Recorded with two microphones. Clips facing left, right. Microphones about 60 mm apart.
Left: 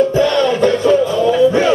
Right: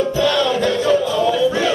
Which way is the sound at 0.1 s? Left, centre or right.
Left.